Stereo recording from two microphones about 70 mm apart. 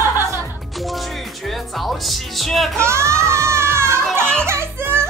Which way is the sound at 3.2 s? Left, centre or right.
Right.